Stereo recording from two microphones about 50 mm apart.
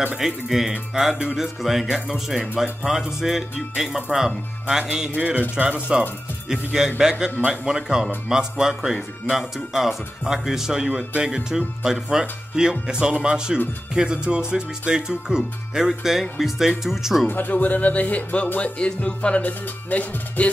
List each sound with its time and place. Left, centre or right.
0.2 s speech: centre
5.1 s a man's voice: right
5.9 s speech: centre
17.3 s speech: left
19.4 s speech: left